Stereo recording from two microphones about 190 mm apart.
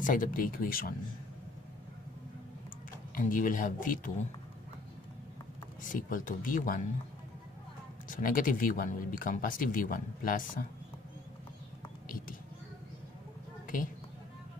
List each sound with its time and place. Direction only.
0.0 s speech: 45° left (ahead or behind)
3.2 s speech: 45° left (ahead or behind)
5.9 s speech: 45° left (ahead or behind)
8.1 s speech: 45° left (ahead or behind)